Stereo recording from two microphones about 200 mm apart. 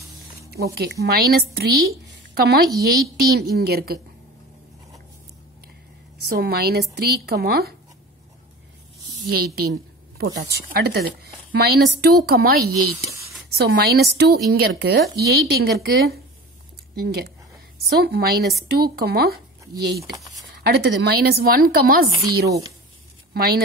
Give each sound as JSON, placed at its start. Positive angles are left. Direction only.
{"t": 0.7, "sound": "speech", "side_deg": -50}
{"t": 6.2, "sound": "speech", "side_deg": -50}
{"t": 9.3, "sound": "speech", "side_deg": -50}
{"t": 20.1, "sound": "speech", "side_deg": 0}
{"t": 20.6, "sound": "a woman's voice", "side_deg": -50}